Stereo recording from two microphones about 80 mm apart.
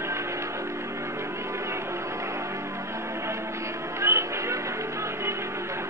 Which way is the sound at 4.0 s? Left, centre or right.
Right.